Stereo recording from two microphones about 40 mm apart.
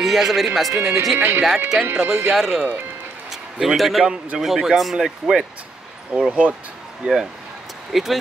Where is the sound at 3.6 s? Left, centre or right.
Centre.